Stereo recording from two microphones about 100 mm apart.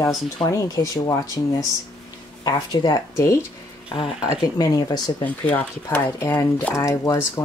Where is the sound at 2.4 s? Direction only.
45° left (ahead or behind).